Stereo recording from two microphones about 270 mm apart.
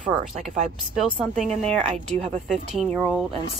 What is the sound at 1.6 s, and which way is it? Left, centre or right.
Speech, right.